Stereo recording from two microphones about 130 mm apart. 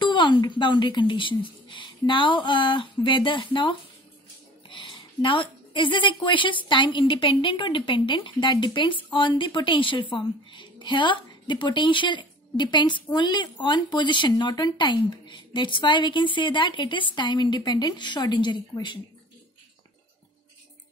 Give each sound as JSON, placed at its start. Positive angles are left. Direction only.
{"t": 0.0, "sound": "a woman's voice", "side_deg": 35}
{"t": 4.6, "sound": "a sound", "side_deg": 40}
{"t": 6.2, "sound": "a woman's voice", "side_deg": 40}